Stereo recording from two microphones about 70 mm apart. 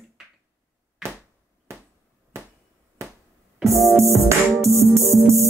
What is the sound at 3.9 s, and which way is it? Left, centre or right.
Music, right.